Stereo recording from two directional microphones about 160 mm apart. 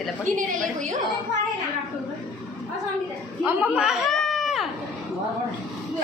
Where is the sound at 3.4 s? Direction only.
5° right (ahead or behind).